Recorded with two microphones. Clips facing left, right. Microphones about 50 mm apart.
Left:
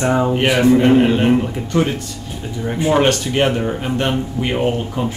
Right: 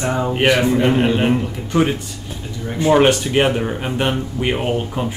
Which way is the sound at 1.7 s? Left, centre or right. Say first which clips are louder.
Right 1 dB; centre.